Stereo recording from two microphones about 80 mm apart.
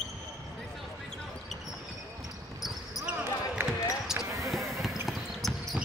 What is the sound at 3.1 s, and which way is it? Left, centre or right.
Basketball bounce, right.